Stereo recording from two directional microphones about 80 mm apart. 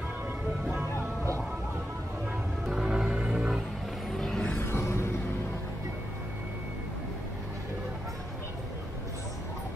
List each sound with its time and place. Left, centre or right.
2.6 s music: centre
4.2 s vehicle: centre
4.6 s music: left